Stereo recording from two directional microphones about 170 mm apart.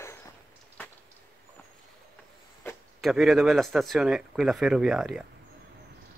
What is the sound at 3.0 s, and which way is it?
A man's voice, centre (ahead or behind).